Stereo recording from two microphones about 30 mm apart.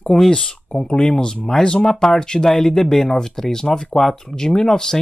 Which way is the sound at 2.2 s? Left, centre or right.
Left.